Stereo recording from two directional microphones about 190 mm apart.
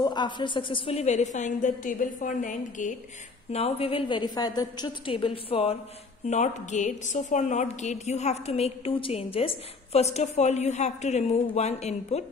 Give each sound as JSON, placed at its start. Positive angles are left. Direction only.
{"t": 0.0, "sound": "a woman's voice", "side_deg": 25}